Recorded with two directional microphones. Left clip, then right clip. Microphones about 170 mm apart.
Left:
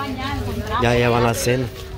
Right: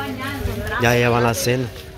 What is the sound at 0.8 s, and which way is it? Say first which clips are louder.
Speech: right 1 dB; 5° left (ahead or behind).